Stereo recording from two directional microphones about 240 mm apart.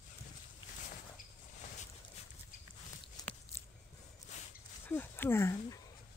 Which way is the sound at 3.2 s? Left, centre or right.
Centre.